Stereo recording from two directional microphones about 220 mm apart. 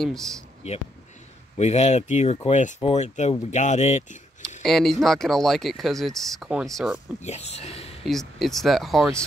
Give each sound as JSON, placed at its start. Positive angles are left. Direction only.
{"t": 0.0, "sound": "speech", "side_deg": 0}
{"t": 0.6, "sound": "speech", "side_deg": 30}
{"t": 4.6, "sound": "speech", "side_deg": 0}
{"t": 7.2, "sound": "speech", "side_deg": 30}
{"t": 8.0, "sound": "speech", "side_deg": 0}